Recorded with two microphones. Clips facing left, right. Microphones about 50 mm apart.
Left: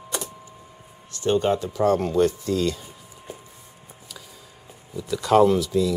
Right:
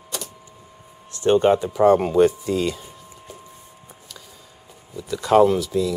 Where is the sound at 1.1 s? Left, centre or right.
Right.